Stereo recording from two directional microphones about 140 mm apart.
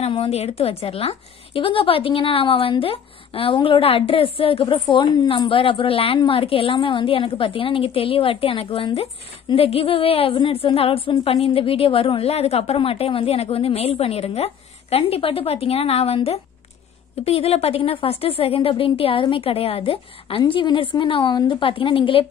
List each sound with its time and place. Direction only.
0.1 s a woman's voice: 45° left (ahead or behind)
17.2 s a woman's voice: 45° left (ahead or behind)